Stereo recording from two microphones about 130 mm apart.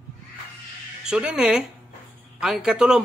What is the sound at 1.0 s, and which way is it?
A man's voice, 5° right (ahead or behind).